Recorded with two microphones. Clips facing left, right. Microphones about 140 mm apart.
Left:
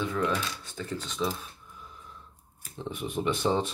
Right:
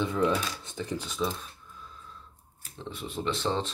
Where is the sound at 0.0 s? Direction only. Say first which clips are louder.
Right 2 dB; 25° right (ahead or behind); by 1.5 s 5° left (ahead or behind).